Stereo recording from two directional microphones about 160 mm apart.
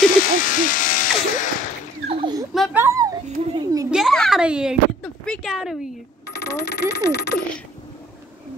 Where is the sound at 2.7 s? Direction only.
15° right (ahead or behind).